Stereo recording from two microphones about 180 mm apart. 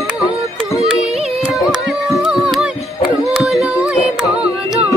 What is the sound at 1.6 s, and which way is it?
Carnatic music, centre (ahead or behind).